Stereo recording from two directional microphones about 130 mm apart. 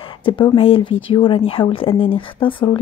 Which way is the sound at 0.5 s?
45° left (ahead or behind).